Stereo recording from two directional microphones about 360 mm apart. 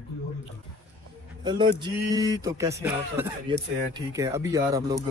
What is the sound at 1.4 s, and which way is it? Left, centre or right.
Speech, centre.